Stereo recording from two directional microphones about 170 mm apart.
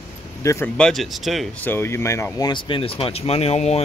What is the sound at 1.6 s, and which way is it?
Speech, 15° left (ahead or behind).